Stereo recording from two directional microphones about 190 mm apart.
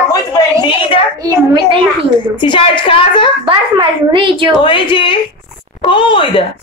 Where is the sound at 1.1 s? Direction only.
20° right (ahead or behind).